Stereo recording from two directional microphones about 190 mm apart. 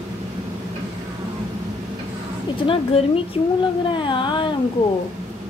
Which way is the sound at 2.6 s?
30° left (ahead or behind).